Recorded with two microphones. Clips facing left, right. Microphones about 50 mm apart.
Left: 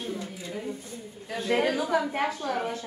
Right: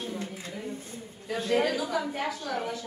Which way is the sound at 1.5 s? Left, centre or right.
Left.